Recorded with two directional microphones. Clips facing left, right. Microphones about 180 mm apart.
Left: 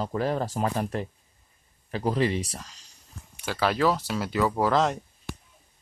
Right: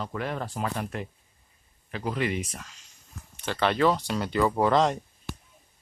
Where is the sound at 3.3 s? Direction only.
5° left (ahead or behind).